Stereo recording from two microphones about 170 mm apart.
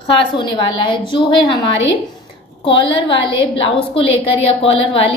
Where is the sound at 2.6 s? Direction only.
30° left (ahead or behind).